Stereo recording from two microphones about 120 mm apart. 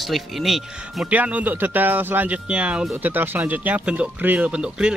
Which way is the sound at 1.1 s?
15° right (ahead or behind).